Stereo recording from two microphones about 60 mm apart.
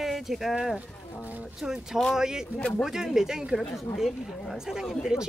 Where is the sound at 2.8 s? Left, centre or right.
Centre.